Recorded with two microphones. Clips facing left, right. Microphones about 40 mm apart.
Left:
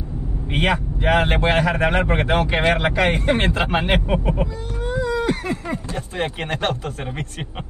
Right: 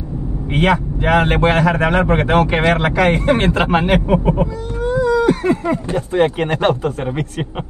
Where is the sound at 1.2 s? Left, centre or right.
Right.